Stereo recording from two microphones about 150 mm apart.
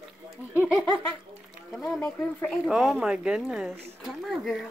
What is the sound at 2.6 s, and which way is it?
A child's voice, centre (ahead or behind).